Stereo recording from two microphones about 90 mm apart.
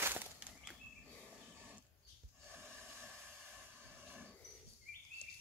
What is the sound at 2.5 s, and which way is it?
Snort, 25° right (ahead or behind).